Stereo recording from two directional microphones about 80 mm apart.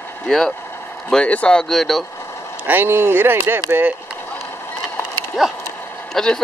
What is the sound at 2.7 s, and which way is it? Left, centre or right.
Speech, right.